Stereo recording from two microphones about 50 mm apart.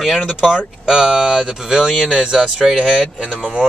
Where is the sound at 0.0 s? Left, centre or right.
Centre.